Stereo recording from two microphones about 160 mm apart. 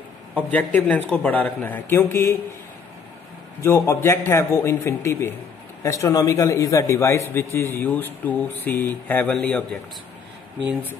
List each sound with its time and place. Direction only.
0.5 s a man's voice: 10° left (ahead or behind)
3.6 s a man's voice: 15° left (ahead or behind)